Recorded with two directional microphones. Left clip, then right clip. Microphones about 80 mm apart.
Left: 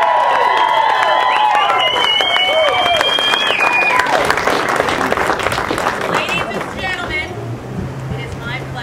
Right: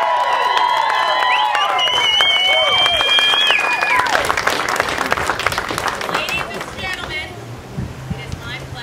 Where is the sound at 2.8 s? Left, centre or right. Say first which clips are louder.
Even; right.